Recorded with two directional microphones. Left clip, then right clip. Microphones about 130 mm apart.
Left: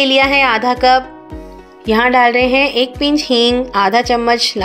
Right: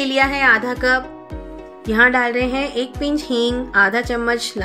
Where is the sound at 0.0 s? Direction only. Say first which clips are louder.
Left 5 dB; 25° left (ahead or behind).